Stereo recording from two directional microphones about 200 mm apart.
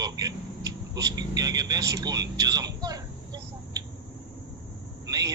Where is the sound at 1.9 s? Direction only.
20° right (ahead or behind).